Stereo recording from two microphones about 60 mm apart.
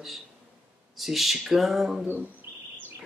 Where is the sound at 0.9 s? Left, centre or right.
Centre.